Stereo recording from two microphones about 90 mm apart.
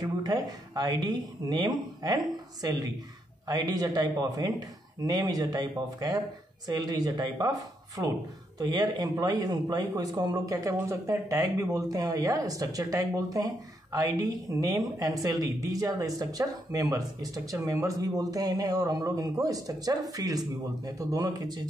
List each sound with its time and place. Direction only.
0.0 s speech: 45° right (ahead or behind)
3.4 s speech: 45° right (ahead or behind)